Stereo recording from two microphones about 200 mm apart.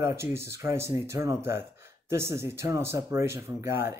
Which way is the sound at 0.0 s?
15° right (ahead or behind).